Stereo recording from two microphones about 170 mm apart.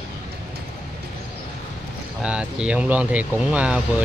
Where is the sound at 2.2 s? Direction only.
5° right (ahead or behind).